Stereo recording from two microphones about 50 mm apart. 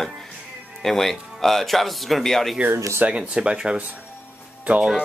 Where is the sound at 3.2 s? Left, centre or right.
Centre.